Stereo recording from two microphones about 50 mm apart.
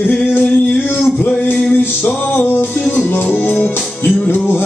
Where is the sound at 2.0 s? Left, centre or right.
Left.